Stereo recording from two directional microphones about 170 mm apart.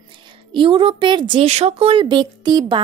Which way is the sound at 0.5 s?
30° right (ahead or behind).